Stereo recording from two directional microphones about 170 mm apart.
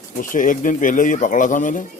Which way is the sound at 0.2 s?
50° left (ahead or behind).